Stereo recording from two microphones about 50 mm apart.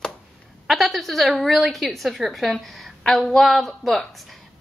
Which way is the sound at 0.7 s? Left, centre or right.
Centre.